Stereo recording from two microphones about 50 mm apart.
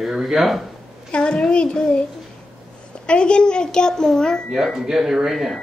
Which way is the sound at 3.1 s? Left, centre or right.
Centre.